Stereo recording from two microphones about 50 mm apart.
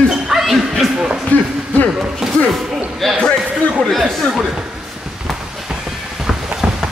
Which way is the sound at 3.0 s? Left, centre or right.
Centre.